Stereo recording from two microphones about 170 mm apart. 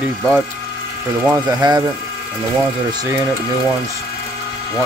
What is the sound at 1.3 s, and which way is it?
Speech, 25° right (ahead or behind).